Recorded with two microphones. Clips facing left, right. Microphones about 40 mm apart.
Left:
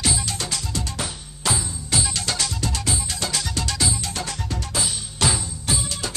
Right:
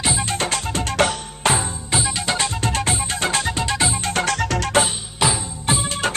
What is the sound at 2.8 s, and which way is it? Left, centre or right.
Music, right.